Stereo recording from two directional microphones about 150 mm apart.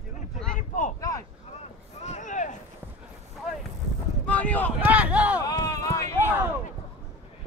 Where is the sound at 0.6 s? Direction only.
55° left (ahead or behind).